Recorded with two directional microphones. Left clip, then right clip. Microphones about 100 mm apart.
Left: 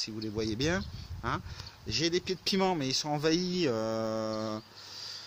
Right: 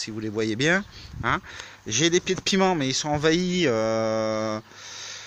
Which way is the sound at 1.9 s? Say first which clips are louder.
Right 8 dB; 65° right (ahead or behind).